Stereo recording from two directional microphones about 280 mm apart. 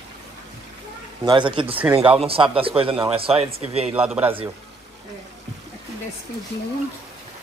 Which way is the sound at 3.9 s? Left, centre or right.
Centre.